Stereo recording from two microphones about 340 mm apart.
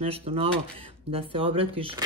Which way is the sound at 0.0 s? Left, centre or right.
Centre.